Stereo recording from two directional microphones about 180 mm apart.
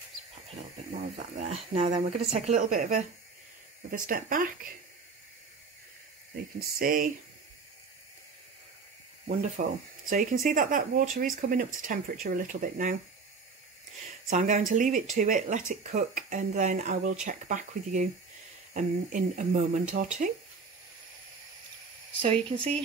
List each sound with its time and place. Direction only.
1.3 s speech: 40° right (ahead or behind)
4.1 s speech: 50° right (ahead or behind)
6.6 s speech: 50° right (ahead or behind)
9.6 s speech: 40° right (ahead or behind)
14.3 s speech: 45° right (ahead or behind)
22.2 s speech: 30° right (ahead or behind)